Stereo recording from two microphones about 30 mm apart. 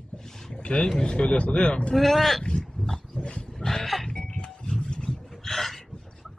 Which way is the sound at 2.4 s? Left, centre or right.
Left.